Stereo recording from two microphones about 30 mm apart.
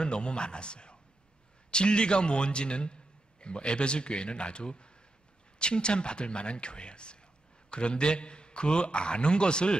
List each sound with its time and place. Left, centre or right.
0.0 s a man's voice: left